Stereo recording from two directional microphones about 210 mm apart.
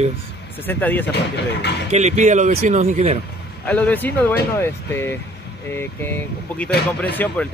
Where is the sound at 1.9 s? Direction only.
35° right (ahead or behind).